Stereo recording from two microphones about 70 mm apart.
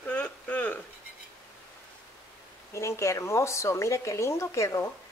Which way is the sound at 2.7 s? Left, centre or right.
Left.